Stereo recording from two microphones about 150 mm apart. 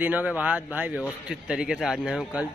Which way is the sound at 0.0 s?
10° right (ahead or behind).